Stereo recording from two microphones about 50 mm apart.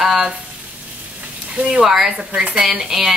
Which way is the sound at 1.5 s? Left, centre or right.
Centre.